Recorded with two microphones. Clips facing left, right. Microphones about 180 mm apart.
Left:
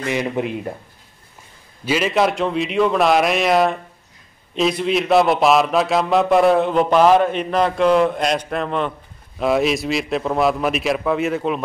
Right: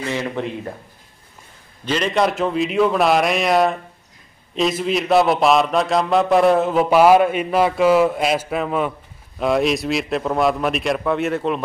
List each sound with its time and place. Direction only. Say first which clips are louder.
0.0 s a man's voice: left 2 dB; 15° left (ahead or behind)
1.9 s a man's voice: left 1 dB; 5° left (ahead or behind)